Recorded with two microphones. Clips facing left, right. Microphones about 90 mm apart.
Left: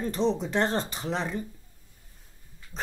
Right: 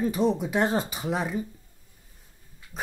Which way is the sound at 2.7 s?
10° right (ahead or behind).